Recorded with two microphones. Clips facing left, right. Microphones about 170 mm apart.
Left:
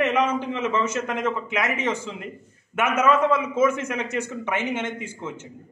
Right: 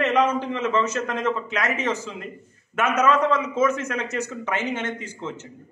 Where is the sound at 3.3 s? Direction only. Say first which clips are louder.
Left 1 dB; 10° left (ahead or behind).